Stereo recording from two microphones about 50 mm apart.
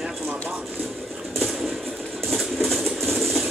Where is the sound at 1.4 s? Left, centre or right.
Centre.